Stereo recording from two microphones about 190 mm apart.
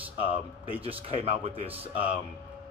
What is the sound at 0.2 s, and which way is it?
Speech, 30° right (ahead or behind).